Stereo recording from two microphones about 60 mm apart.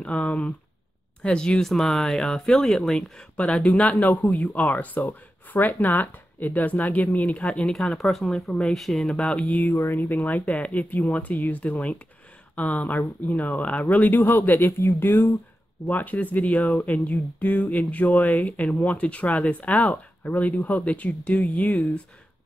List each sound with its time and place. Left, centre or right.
0.0 s speech: left
3.3 s speech: left
8.7 s speech: centre
9.1 s speech: centre; by 15.1 s left
15.9 s speech: left